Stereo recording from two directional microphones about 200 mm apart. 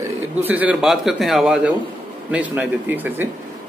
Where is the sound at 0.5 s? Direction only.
5° right (ahead or behind).